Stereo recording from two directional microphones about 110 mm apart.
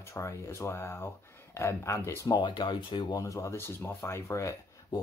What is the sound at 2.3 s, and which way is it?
Speech, 45° left (ahead or behind).